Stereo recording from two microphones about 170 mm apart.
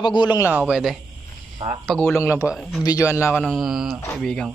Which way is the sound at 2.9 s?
15° left (ahead or behind).